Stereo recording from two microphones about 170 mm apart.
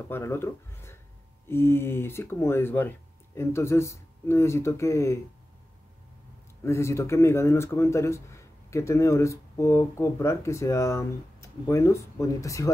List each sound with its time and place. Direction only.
0.1 s speech: 15° left (ahead or behind)
6.6 s speech: 15° left (ahead or behind)